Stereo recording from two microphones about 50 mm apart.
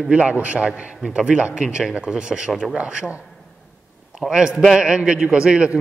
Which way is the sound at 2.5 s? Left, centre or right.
Centre.